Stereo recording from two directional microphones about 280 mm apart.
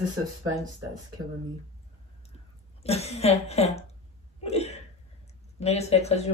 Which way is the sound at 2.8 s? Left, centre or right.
Left.